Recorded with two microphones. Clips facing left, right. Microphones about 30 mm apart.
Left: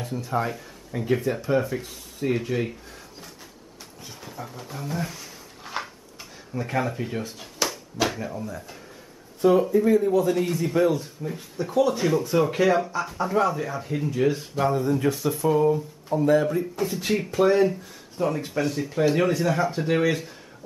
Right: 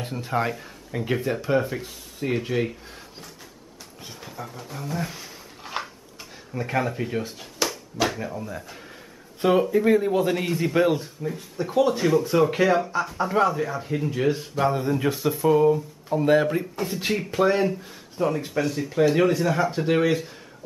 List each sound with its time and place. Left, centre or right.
0.0 s a man's voice: right
0.5 s speech: centre
1.8 s speech: centre
4.1 s speech: centre
5.1 s a sound: centre
6.5 s speech: centre
8.4 s speech: centre
9.4 s a man's voice: right
11.2 s speech: centre
16.2 s a man's voice: right
16.7 s speech: centre